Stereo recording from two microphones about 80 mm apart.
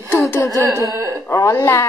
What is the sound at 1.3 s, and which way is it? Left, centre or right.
Speech, left.